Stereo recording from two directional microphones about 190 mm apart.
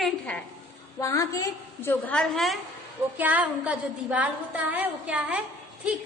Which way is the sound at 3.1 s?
10° right (ahead or behind).